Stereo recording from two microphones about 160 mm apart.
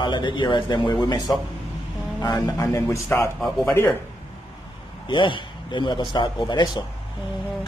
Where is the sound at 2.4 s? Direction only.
20° left (ahead or behind).